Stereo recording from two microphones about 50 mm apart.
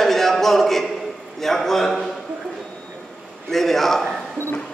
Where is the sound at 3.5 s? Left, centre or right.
Centre.